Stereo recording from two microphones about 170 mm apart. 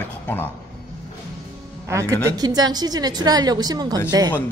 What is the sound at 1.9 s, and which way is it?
A woman's voice, 20° right (ahead or behind).